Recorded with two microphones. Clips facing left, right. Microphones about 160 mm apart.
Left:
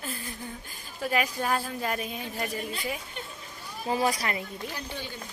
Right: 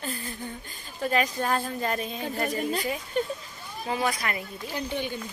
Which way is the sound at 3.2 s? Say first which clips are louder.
Right 13 dB; 45° right (ahead or behind).